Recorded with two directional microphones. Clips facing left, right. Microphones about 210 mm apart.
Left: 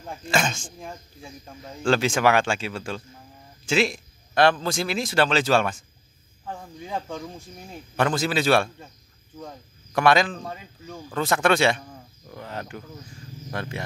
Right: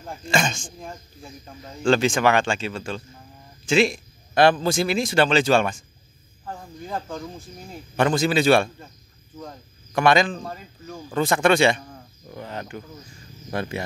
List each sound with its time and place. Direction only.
0.2 s speech: 5° left (ahead or behind)
13.5 s speech: 10° right (ahead or behind)